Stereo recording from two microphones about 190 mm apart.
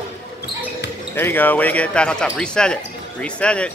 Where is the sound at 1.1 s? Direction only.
10° left (ahead or behind).